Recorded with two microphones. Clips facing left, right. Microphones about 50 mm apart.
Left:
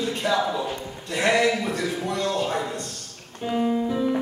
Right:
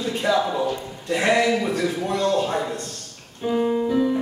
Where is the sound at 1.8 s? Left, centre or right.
Right.